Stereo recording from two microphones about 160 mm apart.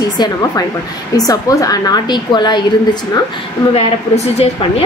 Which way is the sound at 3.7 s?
40° left (ahead or behind).